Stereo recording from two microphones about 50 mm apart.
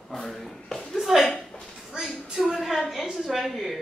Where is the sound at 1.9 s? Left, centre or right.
Centre.